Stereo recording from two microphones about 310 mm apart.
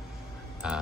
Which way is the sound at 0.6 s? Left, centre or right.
Centre.